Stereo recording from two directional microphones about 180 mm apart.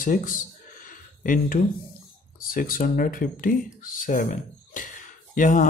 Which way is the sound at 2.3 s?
50° left (ahead or behind).